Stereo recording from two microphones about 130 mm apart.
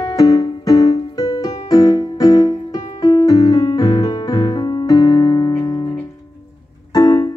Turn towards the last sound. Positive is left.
turn(degrees=30)  # may be behind; listen again after turning